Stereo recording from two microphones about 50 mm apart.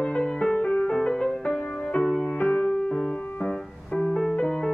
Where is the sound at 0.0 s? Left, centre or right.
Centre.